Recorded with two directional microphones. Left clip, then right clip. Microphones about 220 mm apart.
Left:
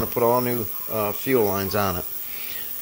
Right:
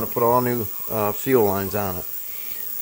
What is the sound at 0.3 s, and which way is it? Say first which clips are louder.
Speech: right 2 dB; 15° right (ahead or behind).